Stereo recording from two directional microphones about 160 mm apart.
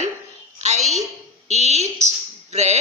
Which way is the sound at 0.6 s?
45° right (ahead or behind).